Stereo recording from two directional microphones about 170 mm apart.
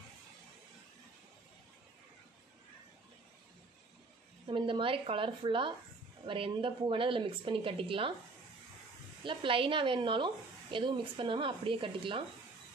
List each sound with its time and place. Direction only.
4.5 s a woman's voice: 30° right (ahead or behind)
9.2 s a woman's voice: 30° right (ahead or behind)